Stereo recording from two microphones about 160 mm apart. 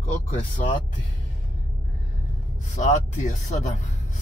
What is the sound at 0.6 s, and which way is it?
Speech, 55° left (ahead or behind).